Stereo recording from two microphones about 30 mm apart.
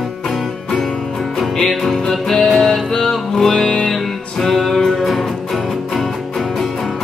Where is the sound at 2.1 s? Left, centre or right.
Centre.